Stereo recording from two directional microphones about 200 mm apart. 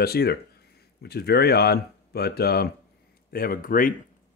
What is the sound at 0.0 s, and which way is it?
Speech, 50° left (ahead or behind).